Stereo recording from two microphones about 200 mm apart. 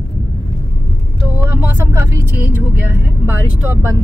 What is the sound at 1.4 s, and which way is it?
Speech, 10° right (ahead or behind).